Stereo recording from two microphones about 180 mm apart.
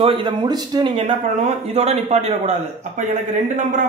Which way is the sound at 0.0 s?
25° right (ahead or behind).